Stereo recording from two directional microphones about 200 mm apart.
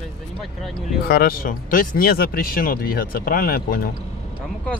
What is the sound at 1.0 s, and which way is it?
Speech, 50° left (ahead or behind).